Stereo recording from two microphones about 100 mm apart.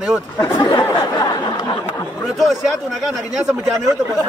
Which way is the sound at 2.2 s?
Centre (ahead or behind).